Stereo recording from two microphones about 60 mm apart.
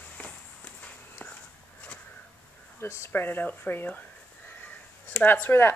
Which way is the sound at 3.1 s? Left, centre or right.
Left.